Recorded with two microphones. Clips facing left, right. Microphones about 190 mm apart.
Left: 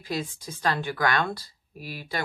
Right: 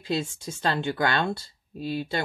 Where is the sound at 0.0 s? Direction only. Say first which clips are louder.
Right 3 dB; 25° right (ahead or behind).